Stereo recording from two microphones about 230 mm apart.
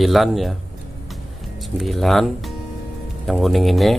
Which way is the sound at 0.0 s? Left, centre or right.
Centre.